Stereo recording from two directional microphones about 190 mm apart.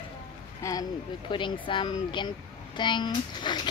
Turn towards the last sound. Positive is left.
turn(degrees=25)  # may be behind; listen again after turning